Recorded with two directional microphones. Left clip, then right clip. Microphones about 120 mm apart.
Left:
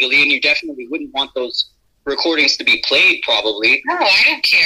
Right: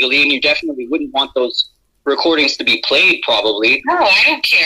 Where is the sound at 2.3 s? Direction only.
20° right (ahead or behind).